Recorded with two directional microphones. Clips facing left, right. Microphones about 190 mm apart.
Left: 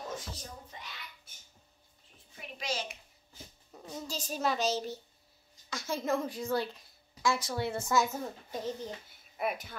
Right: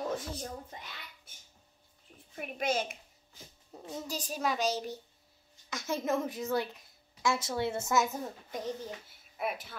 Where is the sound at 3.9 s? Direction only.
15° right (ahead or behind).